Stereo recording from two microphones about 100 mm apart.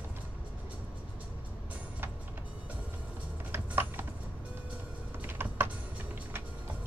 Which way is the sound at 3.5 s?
20° right (ahead or behind).